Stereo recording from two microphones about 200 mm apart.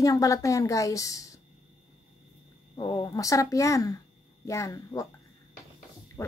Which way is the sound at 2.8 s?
20° left (ahead or behind).